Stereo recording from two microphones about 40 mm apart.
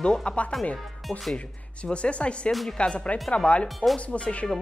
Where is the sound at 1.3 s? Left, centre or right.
Left.